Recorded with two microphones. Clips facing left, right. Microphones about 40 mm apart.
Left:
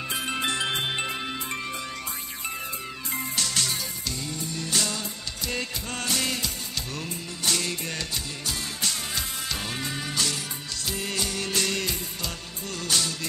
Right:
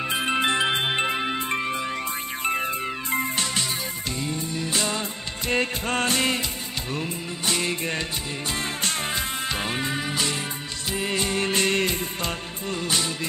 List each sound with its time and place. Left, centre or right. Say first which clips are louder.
0.1 s music: right 5 dB; right
2.4 s music: right 9 dB; right
5.5 s music: right 9 dB; right
12.6 s music: right 2 dB; right